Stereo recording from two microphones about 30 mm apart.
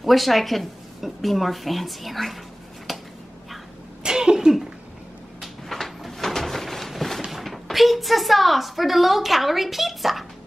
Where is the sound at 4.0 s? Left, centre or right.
Right.